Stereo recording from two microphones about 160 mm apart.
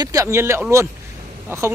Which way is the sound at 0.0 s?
20° right (ahead or behind).